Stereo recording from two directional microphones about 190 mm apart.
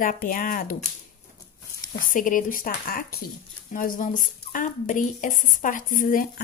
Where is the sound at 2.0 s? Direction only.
45° left (ahead or behind).